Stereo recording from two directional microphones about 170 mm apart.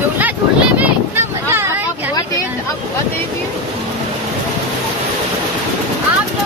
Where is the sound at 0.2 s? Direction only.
10° right (ahead or behind).